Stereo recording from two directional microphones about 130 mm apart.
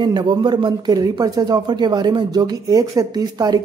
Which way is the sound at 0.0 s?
35° right (ahead or behind).